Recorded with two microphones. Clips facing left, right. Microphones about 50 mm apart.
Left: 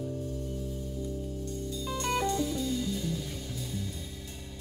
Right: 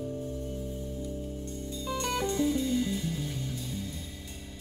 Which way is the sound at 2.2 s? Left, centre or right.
Right.